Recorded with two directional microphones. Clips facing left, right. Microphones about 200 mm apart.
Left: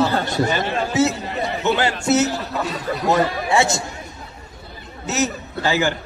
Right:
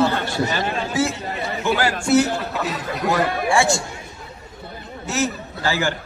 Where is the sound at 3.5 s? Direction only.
20° left (ahead or behind).